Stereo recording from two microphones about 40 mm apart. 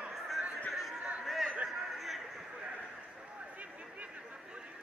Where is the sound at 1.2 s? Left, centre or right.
Centre.